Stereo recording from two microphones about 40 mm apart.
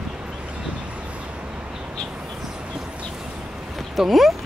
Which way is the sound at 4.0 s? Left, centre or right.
Centre.